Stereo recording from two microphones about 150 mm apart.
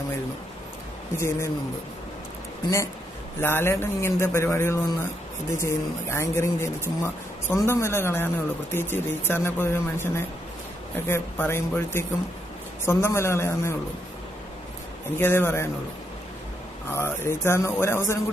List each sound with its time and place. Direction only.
1.1 s a man's voice: 15° left (ahead or behind)
2.6 s a man's voice: 20° left (ahead or behind)
15.1 s a man's voice: 15° left (ahead or behind)
16.9 s a man's voice: 15° left (ahead or behind)